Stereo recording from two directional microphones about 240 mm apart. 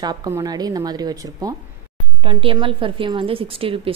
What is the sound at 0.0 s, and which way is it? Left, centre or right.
A woman's voice, centre.